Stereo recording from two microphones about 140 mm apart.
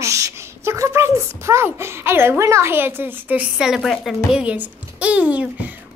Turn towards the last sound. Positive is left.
turn(degrees=-10)  # may be behind; listen again after turning